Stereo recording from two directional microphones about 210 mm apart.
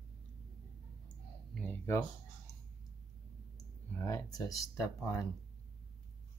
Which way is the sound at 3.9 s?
15° left (ahead or behind).